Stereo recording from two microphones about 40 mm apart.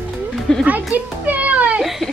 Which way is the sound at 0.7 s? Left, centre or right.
Right.